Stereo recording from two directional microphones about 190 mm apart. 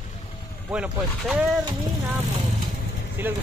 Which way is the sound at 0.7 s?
5° right (ahead or behind).